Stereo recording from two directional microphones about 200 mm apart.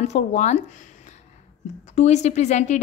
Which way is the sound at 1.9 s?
35° left (ahead or behind).